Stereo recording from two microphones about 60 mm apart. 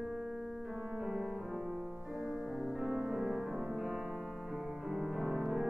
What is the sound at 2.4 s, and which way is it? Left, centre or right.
Music, right.